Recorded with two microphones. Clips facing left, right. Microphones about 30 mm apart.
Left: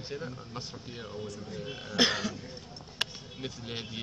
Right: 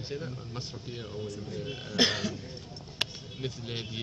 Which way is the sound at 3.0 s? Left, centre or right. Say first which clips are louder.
Right 1 dB; right.